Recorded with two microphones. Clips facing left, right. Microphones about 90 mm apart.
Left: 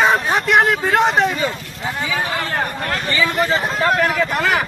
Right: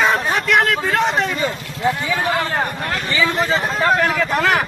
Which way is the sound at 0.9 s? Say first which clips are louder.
Left 3 dB; 40° left (ahead or behind).